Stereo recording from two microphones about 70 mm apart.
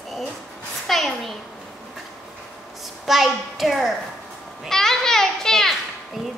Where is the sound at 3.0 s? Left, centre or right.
Centre.